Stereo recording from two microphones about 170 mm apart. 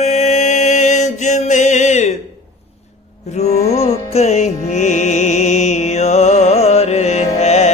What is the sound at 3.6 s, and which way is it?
Music, 40° left (ahead or behind).